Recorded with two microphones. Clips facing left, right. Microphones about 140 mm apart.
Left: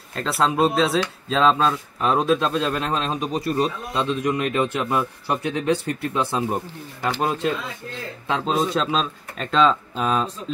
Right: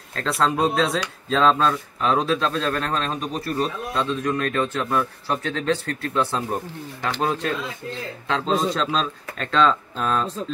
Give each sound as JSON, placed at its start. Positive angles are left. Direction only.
{"t": 0.1, "sound": "a man's voice", "side_deg": 5}